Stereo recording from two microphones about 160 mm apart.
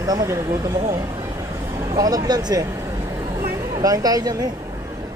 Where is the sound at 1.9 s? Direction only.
25° right (ahead or behind).